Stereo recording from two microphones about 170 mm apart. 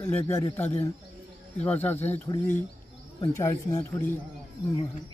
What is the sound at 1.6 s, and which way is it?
A man's voice, 10° left (ahead or behind).